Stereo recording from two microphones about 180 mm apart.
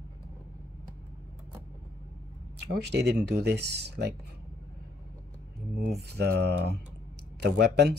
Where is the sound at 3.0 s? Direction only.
65° right (ahead or behind).